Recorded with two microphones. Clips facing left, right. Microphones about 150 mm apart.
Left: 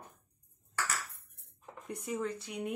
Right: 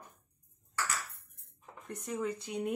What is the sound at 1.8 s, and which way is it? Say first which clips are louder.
Speech: left 1 dB; 10° left (ahead or behind).